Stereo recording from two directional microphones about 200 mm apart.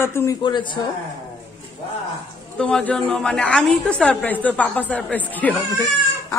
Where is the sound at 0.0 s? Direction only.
15° left (ahead or behind).